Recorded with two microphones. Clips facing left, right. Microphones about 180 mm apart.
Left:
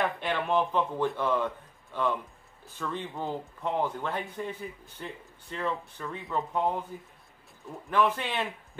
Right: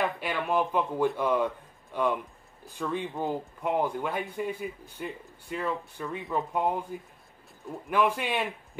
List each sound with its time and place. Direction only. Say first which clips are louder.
0.0 s speech: even; 5° right (ahead or behind)
7.9 s speech: right 1 dB; 10° right (ahead or behind)